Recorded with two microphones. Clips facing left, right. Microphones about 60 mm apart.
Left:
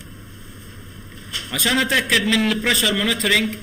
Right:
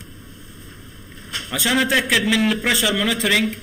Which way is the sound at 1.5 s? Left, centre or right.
Centre.